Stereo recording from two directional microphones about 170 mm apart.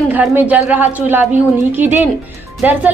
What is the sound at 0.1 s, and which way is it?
Speech, 10° right (ahead or behind).